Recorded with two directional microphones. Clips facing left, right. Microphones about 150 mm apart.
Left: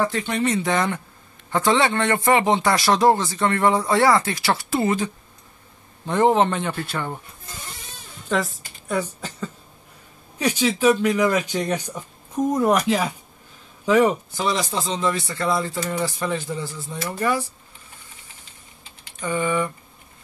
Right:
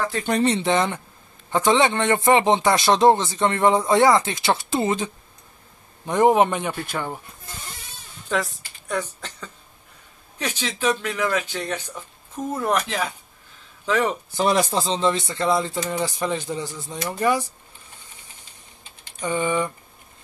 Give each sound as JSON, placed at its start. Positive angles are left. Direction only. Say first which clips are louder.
{"t": 0.2, "sound": "speech", "louder": "right 2 dB", "side_deg": -35}
{"t": 8.3, "sound": "speech", "louder": "left 2 dB", "side_deg": 0}
{"t": 10.4, "sound": "speech", "louder": "left 6 dB", "side_deg": 10}
{"t": 14.4, "sound": "speech", "louder": "right 4 dB", "side_deg": -50}
{"t": 14.8, "sound": "speech", "louder": "right 2 dB", "side_deg": -30}
{"t": 19.2, "sound": "speech", "louder": "even", "side_deg": -20}